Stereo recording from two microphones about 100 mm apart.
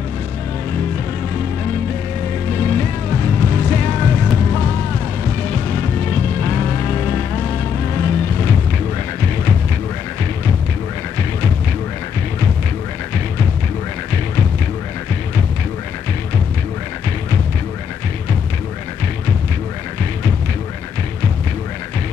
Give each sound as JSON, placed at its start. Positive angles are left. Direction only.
{"t": 2.5, "sound": "music", "side_deg": 20}